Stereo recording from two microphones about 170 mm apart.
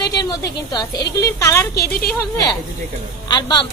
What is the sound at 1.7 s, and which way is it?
Speech, 70° left (ahead or behind).